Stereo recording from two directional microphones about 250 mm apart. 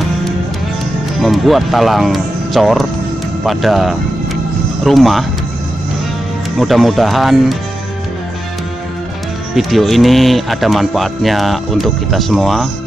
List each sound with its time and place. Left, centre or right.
1.2 s speech: centre
6.6 s speech: centre
9.6 s speech: centre